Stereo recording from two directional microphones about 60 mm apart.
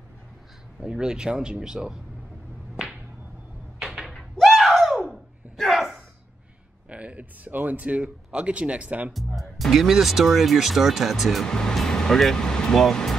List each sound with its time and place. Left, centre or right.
0.7 s speech: centre
2.7 s whip: centre
3.8 s door: centre
4.1 s a sound: centre
6.9 s speech: right
9.1 s speech: centre
11.4 s speech: centre